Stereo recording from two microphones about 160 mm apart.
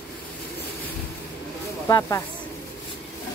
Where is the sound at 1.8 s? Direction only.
20° left (ahead or behind).